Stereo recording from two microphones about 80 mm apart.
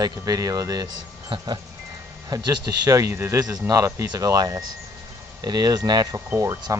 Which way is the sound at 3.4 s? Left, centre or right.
Right.